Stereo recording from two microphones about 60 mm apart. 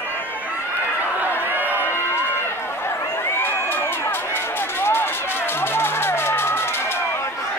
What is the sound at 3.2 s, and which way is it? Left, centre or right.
Run, left.